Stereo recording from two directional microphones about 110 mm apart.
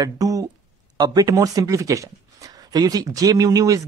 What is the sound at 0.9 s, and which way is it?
Speech, 35° right (ahead or behind).